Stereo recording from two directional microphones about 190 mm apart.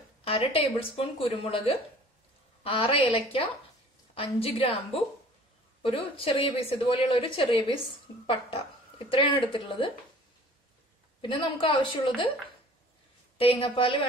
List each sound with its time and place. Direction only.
0.3 s a woman's voice: 30° left (ahead or behind)
11.1 s a woman's voice: 25° left (ahead or behind)
13.4 s a woman's voice: 30° left (ahead or behind)